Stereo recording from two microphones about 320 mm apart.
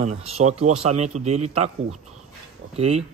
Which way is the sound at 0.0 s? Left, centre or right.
Right.